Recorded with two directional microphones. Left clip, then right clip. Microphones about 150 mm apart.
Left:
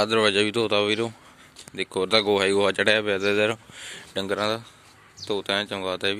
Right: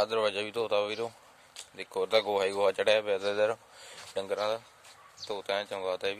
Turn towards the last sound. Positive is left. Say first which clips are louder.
# left 6 dB
turn(degrees=-5)  # may be behind; listen again after turning